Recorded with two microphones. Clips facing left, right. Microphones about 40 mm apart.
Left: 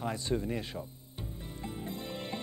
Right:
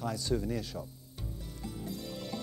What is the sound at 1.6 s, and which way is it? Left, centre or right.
Music, left.